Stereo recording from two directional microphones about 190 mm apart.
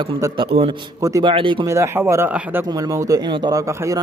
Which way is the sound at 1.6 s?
15° right (ahead or behind).